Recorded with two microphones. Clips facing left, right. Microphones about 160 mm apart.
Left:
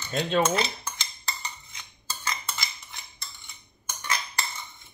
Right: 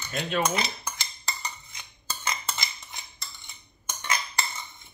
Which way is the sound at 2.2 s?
20° right (ahead or behind).